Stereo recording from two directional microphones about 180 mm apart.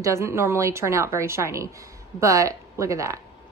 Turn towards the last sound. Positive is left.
turn(degrees=-15)  # may be behind; listen again after turning